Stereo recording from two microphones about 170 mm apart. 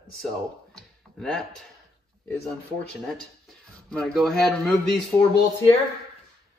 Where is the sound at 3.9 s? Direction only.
Centre (ahead or behind).